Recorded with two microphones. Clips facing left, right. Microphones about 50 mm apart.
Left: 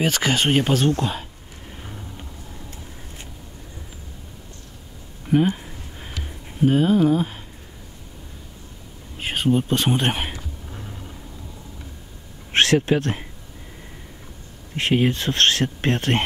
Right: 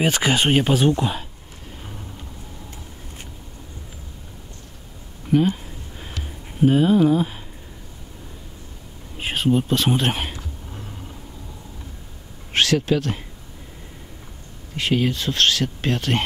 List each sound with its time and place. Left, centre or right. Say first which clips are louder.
0.0 s speech: right 1 dB; centre
5.3 s speech: even; centre
5.9 s a sound: right 1 dB; centre
6.6 s speech: right 1 dB; centre
9.2 s insect: even; centre
10.1 s a sound: even; centre
12.5 s speech: left 1 dB; left
14.8 s speech: left 1 dB; left